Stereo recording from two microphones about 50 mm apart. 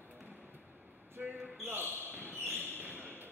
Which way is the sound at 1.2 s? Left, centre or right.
Right.